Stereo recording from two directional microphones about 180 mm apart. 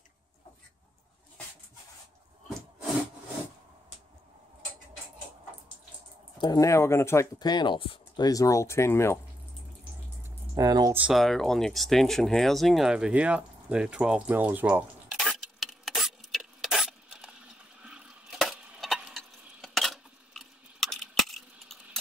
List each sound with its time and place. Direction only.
6.3 s speech: 20° left (ahead or behind)
10.5 s speech: 20° right (ahead or behind)
11.0 s speech: centre (ahead or behind)
15.2 s keys jangling: centre (ahead or behind)
17.8 s a sound: 5° right (ahead or behind)